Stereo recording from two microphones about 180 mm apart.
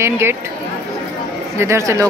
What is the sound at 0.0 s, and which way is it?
Speech, 15° right (ahead or behind).